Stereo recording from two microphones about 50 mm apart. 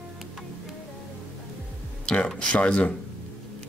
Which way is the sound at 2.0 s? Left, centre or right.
Centre.